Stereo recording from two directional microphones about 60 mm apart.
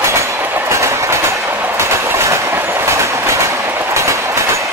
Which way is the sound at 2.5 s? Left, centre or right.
Right.